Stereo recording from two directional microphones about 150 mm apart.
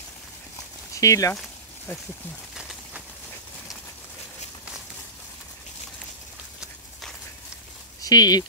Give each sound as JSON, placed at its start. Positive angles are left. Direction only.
{"t": 0.9, "sound": "speech", "side_deg": 20}
{"t": 2.5, "sound": "a sound", "side_deg": -5}
{"t": 8.0, "sound": "speech", "side_deg": 25}